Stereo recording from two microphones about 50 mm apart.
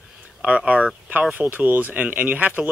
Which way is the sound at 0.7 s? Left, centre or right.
Right.